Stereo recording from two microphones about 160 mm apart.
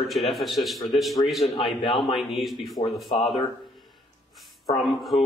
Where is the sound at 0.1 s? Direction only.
Centre (ahead or behind).